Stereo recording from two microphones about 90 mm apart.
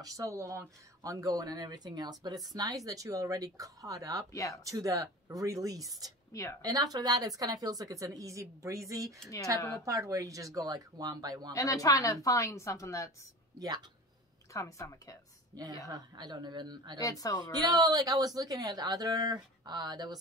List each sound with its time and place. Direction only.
0.0 s a woman's voice: 40° right (ahead or behind)
4.3 s speech: 35° left (ahead or behind)
4.6 s a woman's voice: 40° right (ahead or behind)
9.6 s speech: 35° left (ahead or behind)
9.8 s a woman's voice: 35° right (ahead or behind)
11.5 s speech: 40° left (ahead or behind)
14.5 s speech: 35° left (ahead or behind)
15.9 s a woman's voice: 50° right (ahead or behind)
17.0 s speech: 40° left (ahead or behind)
17.4 s a woman's voice: 50° right (ahead or behind)